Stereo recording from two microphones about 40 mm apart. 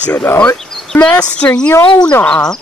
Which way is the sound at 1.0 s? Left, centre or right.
Left.